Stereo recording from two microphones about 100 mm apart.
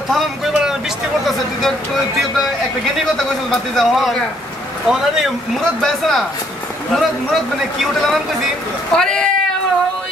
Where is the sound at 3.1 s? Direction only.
5° left (ahead or behind).